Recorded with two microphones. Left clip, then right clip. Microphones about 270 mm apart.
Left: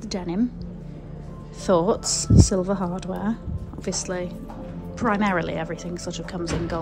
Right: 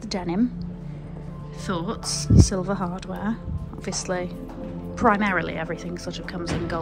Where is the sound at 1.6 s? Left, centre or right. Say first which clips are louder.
Left 9 dB; centre.